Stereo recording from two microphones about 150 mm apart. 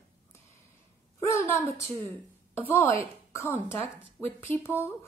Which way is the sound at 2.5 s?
15° left (ahead or behind).